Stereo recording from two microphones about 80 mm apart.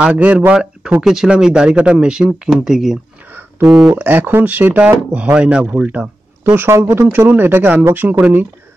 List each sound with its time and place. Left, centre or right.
0.0 s speech: centre
1.0 s speech: centre
3.3 s a sound: right
3.6 s speech: centre
3.9 s speech: right
6.4 s speech: right